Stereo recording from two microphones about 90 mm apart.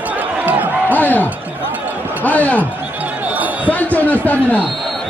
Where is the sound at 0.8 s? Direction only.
20° left (ahead or behind).